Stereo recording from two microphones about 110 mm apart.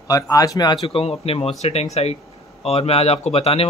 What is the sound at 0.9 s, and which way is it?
Speech, 60° left (ahead or behind).